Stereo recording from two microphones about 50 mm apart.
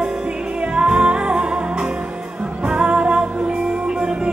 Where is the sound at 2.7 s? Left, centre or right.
Centre.